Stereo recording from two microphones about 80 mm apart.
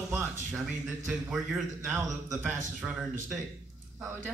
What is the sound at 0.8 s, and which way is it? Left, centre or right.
Speech, centre.